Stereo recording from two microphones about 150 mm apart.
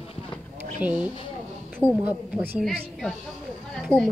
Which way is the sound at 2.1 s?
5° right (ahead or behind).